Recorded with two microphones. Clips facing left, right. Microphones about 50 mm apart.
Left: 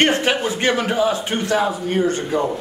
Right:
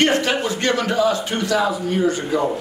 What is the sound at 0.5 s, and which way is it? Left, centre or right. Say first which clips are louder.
A man's voice: left 1 dB; left.